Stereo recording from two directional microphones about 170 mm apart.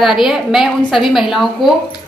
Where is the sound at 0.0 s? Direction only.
5° right (ahead or behind).